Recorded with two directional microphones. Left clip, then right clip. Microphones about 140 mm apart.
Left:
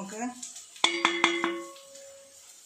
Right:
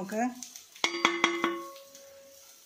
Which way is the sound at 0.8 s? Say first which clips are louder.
Left 2 dB; 30° right (ahead or behind).